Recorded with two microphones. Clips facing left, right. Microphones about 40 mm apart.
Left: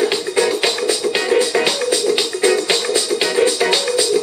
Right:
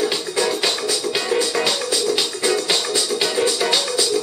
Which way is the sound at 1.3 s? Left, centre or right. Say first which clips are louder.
Left 4 dB; centre.